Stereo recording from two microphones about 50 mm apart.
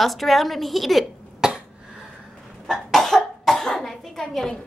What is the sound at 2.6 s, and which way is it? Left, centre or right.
Cough, centre.